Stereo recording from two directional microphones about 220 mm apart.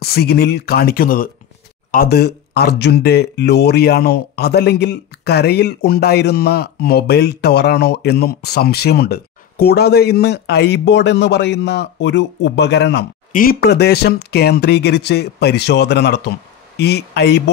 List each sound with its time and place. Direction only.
0.0 s speech: 45° left (ahead or behind)